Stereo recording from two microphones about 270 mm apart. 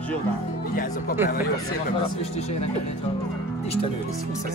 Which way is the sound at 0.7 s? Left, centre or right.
Left.